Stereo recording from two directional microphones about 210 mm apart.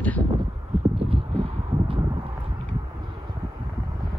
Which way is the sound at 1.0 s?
25° right (ahead or behind).